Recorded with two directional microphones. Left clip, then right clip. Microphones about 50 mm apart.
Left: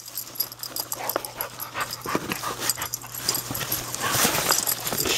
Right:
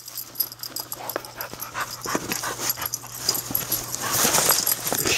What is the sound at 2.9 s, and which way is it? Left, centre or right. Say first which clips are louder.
Dog: right 2 dB; centre.